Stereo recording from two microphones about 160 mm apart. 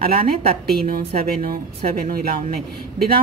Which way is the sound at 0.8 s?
60° right (ahead or behind).